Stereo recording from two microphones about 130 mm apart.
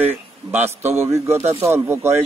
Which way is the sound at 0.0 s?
15° right (ahead or behind).